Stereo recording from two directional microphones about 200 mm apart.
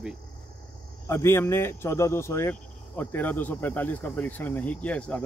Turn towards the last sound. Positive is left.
turn(degrees=5)  # may be behind; listen again after turning